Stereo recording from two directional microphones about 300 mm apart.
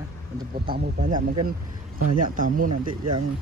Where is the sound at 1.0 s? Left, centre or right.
Right.